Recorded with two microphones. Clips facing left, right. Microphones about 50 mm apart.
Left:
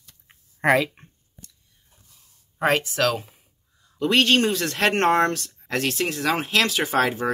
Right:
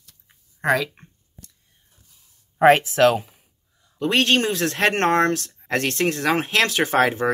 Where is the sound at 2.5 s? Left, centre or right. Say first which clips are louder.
Right 7 dB; right.